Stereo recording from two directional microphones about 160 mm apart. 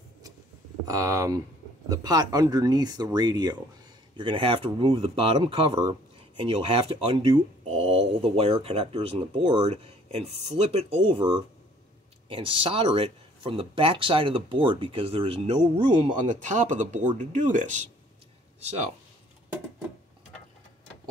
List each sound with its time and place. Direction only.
0.8 s speech: 20° right (ahead or behind); by 18.9 s 40° right (ahead or behind)